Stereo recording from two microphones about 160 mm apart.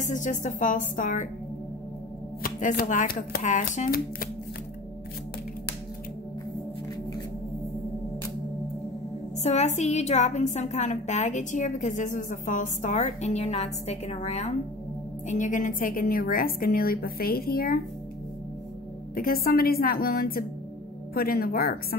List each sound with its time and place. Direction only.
0.0 s a woman's voice: 50° left (ahead or behind)
2.4 s a woman's voice: 65° left (ahead or behind)
9.4 s a woman's voice: 45° left (ahead or behind); by 17.7 s 70° left (ahead or behind)
19.1 s a woman's voice: 65° left (ahead or behind)